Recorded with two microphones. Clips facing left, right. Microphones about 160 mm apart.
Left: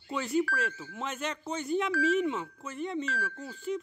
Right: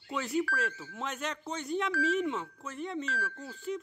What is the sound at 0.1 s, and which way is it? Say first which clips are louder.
Speech: left 2 dB; centre (ahead or behind).